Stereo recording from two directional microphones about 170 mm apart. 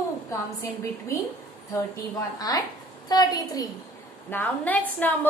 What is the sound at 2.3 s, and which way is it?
A woman's voice, 20° left (ahead or behind).